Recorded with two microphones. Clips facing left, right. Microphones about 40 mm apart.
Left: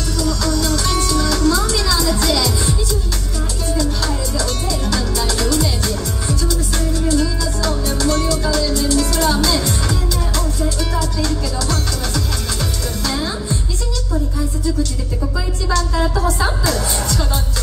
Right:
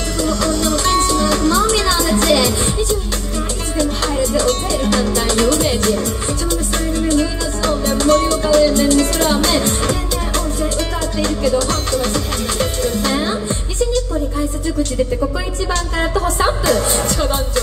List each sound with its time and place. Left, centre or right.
0.2 s music: right
4.0 s music: right
7.1 s music: right
11.0 s music: right
15.7 s music: right